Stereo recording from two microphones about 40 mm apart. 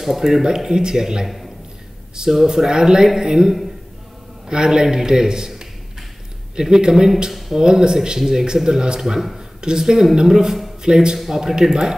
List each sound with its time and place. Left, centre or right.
0.0 s speech: centre
6.5 s speech: centre